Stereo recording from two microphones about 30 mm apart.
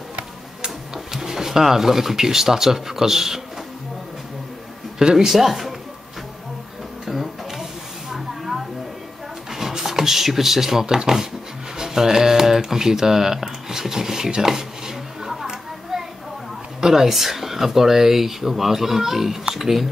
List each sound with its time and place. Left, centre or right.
0.7 s speech: centre
4.9 s speech: centre
7.1 s music: centre
9.5 s a sound: centre
11.8 s speech: centre
14.4 s a sound: centre
16.8 s speech: centre